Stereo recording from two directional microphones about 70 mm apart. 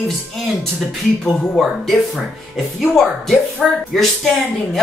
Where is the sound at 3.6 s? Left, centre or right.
Centre.